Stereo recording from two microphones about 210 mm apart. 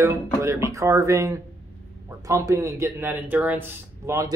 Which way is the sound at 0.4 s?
15° right (ahead or behind).